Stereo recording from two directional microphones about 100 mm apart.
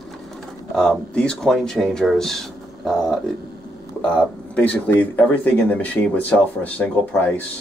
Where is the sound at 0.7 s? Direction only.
10° left (ahead or behind).